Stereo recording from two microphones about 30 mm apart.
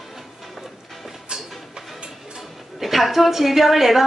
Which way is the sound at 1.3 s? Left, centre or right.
Right.